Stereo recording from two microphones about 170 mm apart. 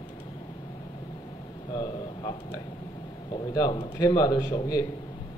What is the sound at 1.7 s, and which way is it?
A man's voice, 25° left (ahead or behind).